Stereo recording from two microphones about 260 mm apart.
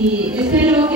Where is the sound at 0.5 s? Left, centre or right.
Centre.